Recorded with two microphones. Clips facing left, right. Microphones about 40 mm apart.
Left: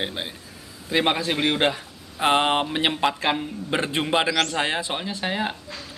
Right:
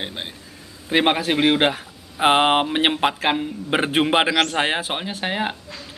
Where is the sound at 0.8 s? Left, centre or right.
Right.